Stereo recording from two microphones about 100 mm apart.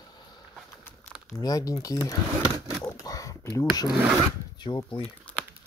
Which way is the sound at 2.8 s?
35° left (ahead or behind).